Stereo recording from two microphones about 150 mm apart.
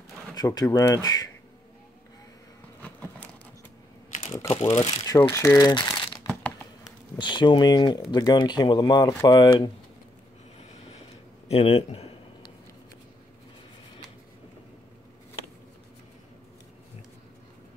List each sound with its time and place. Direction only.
0.3 s speech: 25° left (ahead or behind)
2.8 s a sound: 10° left (ahead or behind)
4.3 s speech: 25° left (ahead or behind)
11.4 s speech: 40° left (ahead or behind)